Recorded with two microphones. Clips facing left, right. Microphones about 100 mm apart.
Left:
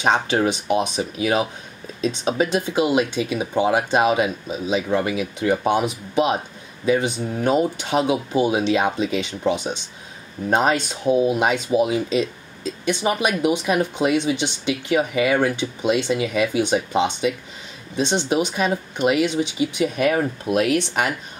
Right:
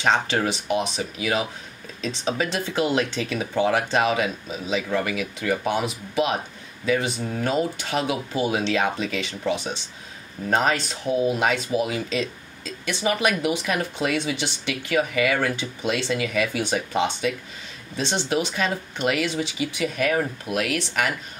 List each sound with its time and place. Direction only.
0.0 s speech: 15° left (ahead or behind)